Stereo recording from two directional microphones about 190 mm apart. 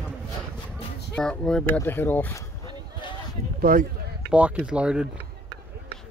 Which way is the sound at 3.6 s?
50° right (ahead or behind).